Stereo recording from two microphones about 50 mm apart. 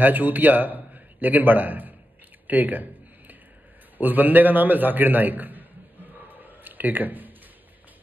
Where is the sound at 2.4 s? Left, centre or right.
Right.